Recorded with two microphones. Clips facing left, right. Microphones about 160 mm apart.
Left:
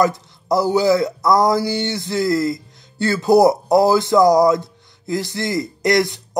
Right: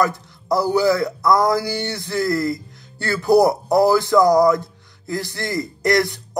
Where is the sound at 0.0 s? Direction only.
20° left (ahead or behind).